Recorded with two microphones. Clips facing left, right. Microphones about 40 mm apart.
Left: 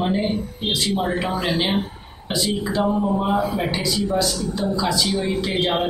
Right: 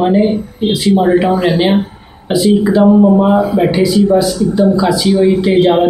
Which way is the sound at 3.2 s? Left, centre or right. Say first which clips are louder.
Right 11 dB; centre.